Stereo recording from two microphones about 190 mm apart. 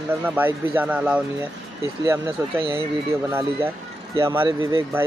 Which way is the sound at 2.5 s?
25° right (ahead or behind).